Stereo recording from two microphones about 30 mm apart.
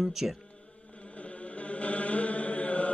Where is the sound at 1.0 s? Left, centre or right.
Left.